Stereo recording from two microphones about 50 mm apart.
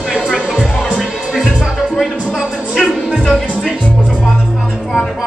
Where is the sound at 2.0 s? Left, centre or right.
Centre.